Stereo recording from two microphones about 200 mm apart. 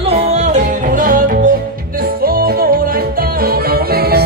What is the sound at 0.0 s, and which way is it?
Music, 35° right (ahead or behind).